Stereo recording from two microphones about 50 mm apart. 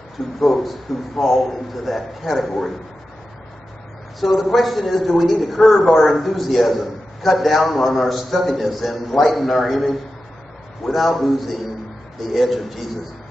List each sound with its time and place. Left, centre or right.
0.4 s a man's voice: centre
1.2 s a man's voice: centre
1.5 s a man's voice: centre
4.2 s a man's voice: centre
10.8 s a man's voice: centre